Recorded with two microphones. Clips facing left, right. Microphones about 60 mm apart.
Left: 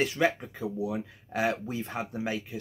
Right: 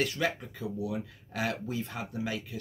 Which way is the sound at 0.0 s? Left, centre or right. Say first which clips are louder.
Left 4 dB; left.